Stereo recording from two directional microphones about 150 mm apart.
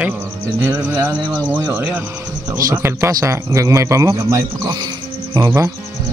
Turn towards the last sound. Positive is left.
turn(degrees=-20)  # may be behind; listen again after turning